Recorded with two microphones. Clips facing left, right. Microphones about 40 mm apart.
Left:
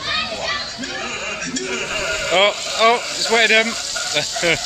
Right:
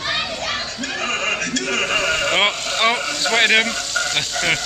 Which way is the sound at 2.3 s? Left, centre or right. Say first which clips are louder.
Left 2 dB; centre.